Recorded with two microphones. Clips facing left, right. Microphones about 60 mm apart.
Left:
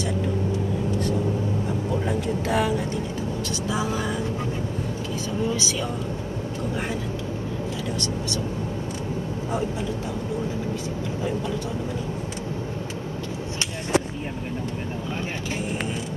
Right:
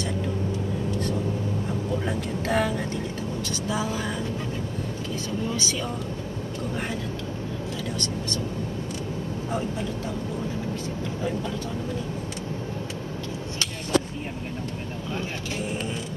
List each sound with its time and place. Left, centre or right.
2.2 s vehicle: right